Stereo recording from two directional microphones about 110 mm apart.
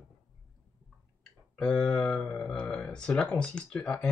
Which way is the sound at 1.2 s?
10° left (ahead or behind).